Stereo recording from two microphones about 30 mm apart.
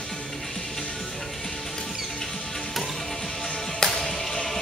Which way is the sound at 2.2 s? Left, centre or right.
Centre.